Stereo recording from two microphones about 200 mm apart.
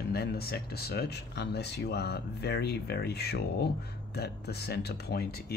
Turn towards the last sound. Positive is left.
turn(degrees=50)  # may be behind; listen again after turning